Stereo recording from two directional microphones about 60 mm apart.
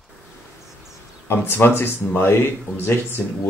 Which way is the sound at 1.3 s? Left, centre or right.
Left.